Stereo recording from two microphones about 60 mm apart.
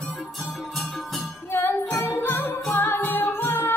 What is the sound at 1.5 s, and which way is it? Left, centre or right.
Music, left.